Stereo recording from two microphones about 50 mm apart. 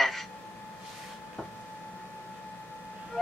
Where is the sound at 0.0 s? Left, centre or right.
Centre.